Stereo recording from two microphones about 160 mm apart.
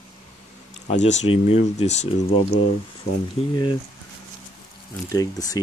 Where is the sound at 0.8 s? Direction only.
45° left (ahead or behind).